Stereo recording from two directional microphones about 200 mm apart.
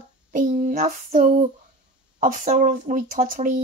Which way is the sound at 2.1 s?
40° right (ahead or behind).